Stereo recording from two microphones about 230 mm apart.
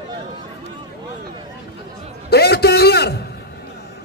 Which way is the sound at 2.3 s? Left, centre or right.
Left.